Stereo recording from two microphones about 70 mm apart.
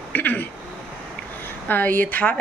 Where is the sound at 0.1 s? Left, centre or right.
Left.